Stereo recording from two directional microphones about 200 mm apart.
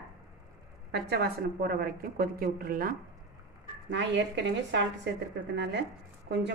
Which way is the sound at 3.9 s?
65° right (ahead or behind).